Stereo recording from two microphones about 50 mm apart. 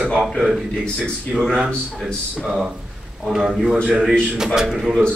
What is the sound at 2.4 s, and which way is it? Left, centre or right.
Speech, centre.